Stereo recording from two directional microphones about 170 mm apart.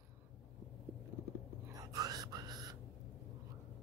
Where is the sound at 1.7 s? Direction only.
20° right (ahead or behind).